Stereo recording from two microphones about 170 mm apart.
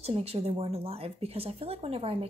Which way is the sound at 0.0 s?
35° right (ahead or behind).